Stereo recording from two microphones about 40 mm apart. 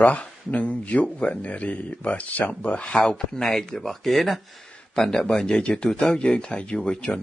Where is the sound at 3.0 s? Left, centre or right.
Centre.